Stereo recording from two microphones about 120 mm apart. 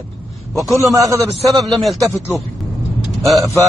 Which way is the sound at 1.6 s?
Centre (ahead or behind).